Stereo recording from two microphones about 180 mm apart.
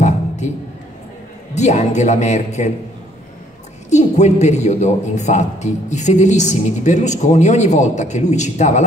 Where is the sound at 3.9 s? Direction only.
40° left (ahead or behind).